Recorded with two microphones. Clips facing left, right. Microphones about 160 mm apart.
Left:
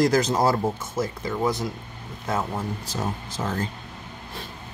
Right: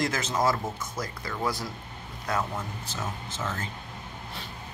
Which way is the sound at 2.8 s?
35° left (ahead or behind).